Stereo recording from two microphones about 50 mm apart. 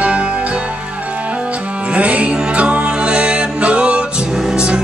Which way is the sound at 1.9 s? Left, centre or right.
Right.